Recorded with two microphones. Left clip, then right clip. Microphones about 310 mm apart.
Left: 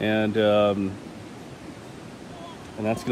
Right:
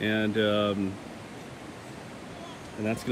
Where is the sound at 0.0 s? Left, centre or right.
Centre.